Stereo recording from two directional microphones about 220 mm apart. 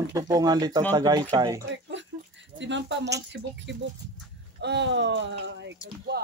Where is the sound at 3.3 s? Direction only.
55° right (ahead or behind).